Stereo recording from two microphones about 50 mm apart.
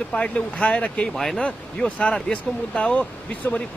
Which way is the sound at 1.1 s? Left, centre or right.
Centre.